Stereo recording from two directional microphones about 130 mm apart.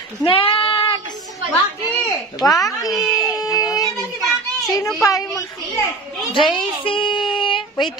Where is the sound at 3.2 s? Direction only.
30° left (ahead or behind).